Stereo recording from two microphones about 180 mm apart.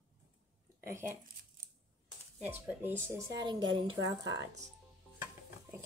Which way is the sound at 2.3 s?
10° right (ahead or behind).